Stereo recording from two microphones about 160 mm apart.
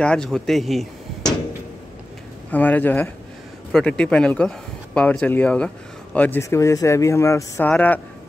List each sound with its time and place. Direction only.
0.0 s speech: 5° left (ahead or behind)
2.5 s speech: 10° left (ahead or behind)